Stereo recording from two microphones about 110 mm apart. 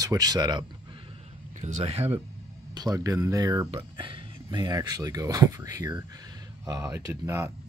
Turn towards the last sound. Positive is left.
turn(degrees=-25)  # may be behind; listen again after turning